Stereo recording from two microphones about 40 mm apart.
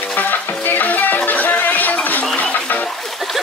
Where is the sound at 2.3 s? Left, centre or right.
Left.